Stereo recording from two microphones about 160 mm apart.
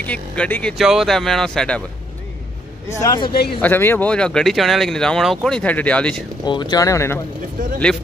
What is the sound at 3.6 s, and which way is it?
Speech, 15° left (ahead or behind).